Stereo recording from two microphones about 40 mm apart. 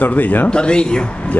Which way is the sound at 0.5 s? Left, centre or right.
Left.